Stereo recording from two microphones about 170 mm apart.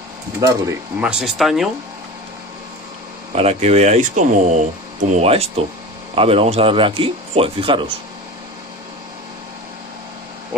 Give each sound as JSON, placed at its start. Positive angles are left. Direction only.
{"t": 0.4, "sound": "speech", "side_deg": -20}
{"t": 1.0, "sound": "speech", "side_deg": -5}
{"t": 3.3, "sound": "speech", "side_deg": -40}